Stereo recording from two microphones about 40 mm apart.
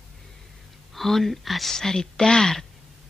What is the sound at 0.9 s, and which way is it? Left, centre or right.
Speech, centre.